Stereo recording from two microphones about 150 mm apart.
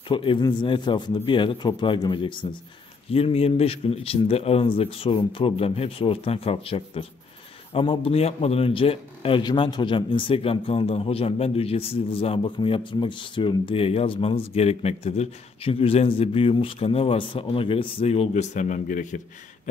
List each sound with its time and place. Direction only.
0.1 s a man's voice: 35° left (ahead or behind); by 19.7 s 60° left (ahead or behind)